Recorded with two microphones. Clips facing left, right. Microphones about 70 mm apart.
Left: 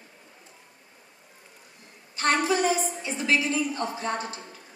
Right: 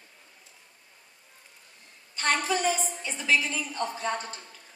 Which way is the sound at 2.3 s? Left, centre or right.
Centre.